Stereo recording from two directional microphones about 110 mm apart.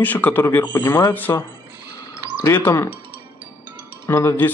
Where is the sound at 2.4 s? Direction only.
25° left (ahead or behind).